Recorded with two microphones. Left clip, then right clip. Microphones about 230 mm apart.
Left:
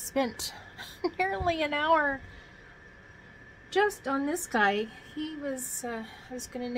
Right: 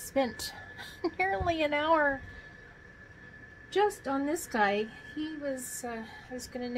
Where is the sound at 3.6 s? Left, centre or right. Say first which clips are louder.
Left 1 dB; centre.